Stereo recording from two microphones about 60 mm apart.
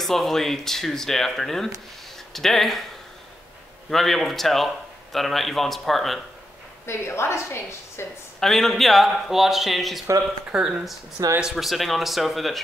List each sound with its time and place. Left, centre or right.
0.0 s speech: centre
3.9 s speech: centre
6.9 s a woman's voice: left
8.4 s speech: centre
10.5 s speech: centre
11.2 s speech: right
11.5 s speech: centre